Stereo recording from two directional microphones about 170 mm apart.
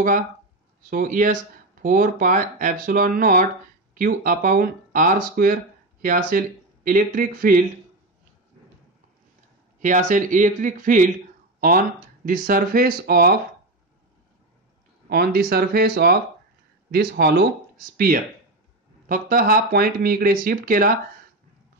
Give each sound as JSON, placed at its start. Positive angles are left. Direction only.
{"t": 0.8, "sound": "speech", "side_deg": -55}
{"t": 9.8, "sound": "speech", "side_deg": -50}
{"t": 12.3, "sound": "speech", "side_deg": -55}
{"t": 15.0, "sound": "speech", "side_deg": -65}